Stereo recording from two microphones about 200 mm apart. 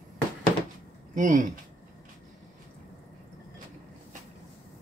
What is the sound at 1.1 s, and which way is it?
Speech, 40° right (ahead or behind).